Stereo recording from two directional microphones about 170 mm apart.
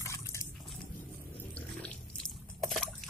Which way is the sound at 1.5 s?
5° left (ahead or behind).